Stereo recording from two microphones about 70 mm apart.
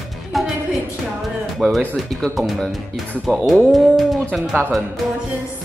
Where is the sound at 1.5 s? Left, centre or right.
Centre.